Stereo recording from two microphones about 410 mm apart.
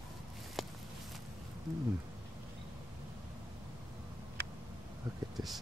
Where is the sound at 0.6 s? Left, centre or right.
Centre.